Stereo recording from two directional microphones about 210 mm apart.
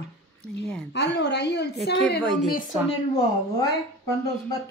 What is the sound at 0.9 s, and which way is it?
Speech, 55° left (ahead or behind).